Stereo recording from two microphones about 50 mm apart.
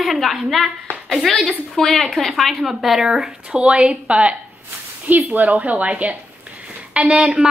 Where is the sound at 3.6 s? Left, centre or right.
Right.